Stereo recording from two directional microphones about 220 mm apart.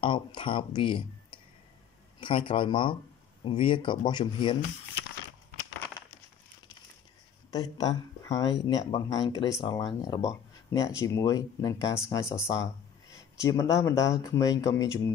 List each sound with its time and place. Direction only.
0.0 s speech: 20° left (ahead or behind)
7.5 s speech: 15° left (ahead or behind)